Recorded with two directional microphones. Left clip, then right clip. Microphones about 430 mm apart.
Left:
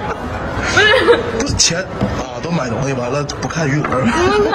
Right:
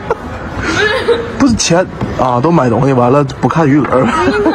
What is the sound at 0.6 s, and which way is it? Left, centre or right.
Chuckle, centre.